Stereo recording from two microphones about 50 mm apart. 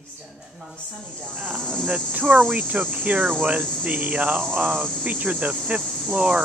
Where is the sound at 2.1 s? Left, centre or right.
Right.